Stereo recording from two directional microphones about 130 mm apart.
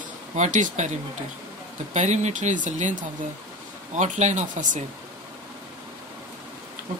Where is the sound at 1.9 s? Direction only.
65° right (ahead or behind).